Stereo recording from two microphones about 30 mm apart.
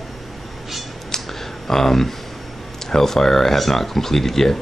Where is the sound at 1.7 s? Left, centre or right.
Centre.